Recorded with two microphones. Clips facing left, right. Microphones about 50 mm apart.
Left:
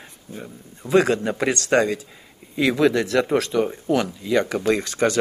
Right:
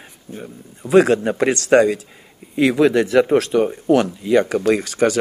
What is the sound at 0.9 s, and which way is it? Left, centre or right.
Speech, centre.